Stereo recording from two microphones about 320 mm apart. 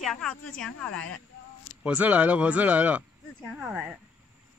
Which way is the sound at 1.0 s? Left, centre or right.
Left.